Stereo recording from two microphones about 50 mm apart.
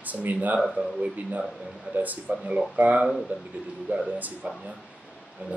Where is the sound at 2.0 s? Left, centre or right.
Right.